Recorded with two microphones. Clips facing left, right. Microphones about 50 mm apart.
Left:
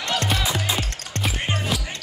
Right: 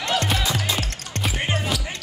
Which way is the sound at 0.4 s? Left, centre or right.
Centre.